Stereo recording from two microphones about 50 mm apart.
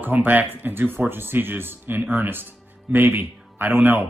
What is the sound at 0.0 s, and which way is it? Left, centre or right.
Speech, right.